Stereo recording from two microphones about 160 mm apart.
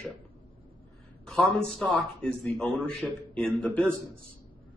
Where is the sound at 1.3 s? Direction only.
5° left (ahead or behind).